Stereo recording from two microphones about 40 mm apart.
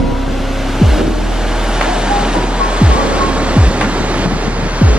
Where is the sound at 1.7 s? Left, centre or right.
Centre.